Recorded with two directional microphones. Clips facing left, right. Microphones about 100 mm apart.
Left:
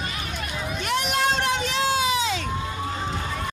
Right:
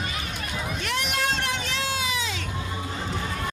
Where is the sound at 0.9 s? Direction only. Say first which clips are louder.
Left 5 dB; 20° left (ahead or behind).